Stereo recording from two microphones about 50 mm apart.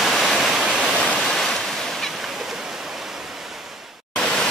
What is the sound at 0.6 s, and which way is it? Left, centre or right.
Waterfall, centre.